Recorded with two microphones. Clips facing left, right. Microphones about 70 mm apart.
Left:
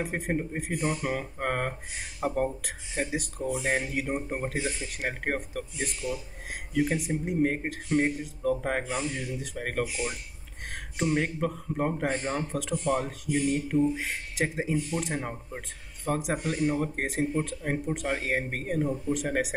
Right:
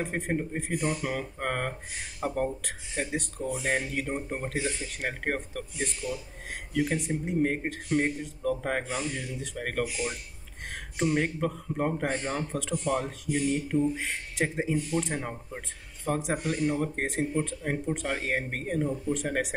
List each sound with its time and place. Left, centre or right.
0.0 s speech: centre
11.0 s speech: centre